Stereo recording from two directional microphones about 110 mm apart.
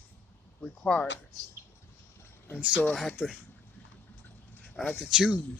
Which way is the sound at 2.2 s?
20° left (ahead or behind).